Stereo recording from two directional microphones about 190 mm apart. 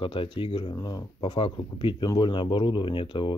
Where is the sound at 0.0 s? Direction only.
25° left (ahead or behind).